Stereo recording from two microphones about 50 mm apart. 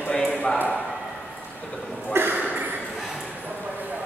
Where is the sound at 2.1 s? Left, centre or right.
Right.